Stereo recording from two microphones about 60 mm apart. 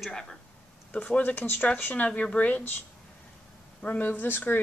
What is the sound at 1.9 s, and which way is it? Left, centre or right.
Speech, left.